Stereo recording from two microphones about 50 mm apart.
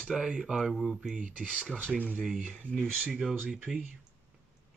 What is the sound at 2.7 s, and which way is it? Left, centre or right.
Speech, right.